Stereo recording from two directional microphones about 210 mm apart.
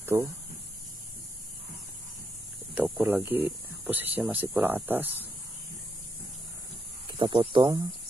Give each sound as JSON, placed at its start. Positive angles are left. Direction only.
{"t": 0.0, "sound": "speech", "side_deg": -10}
{"t": 2.7, "sound": "speech", "side_deg": -5}
{"t": 7.1, "sound": "speech", "side_deg": -20}